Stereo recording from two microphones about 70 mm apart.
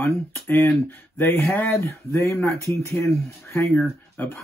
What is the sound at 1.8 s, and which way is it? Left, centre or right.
Speech, left.